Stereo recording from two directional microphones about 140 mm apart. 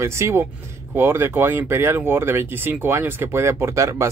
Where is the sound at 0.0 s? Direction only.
20° right (ahead or behind).